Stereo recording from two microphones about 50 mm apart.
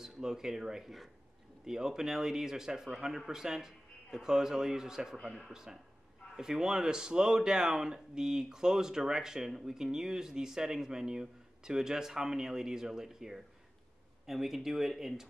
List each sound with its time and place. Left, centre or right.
0.0 s speech: centre